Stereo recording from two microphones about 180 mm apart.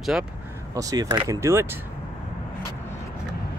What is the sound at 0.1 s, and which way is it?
Speech, 5° right (ahead or behind).